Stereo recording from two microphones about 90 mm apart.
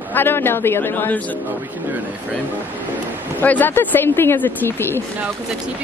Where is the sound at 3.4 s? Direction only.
20° left (ahead or behind).